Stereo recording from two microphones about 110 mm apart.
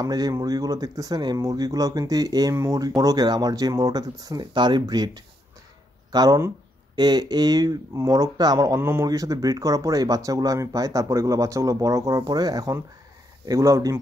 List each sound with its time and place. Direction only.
0.0 s speech: 35° right (ahead or behind)